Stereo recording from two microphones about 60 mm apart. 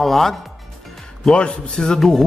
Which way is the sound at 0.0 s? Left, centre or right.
Centre.